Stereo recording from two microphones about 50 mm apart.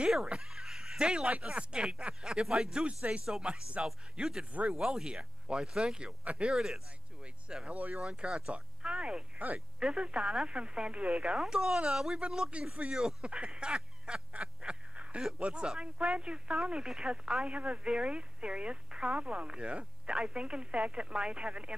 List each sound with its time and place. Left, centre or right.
0.1 s a sound: centre
1.4 s speech: right
3.8 s speech: centre
7.6 s speech: right
9.4 s speech: right
9.8 s speech: centre
11.4 s speech: centre